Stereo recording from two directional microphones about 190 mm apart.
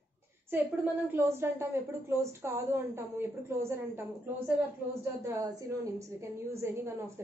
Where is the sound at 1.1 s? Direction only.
15° right (ahead or behind).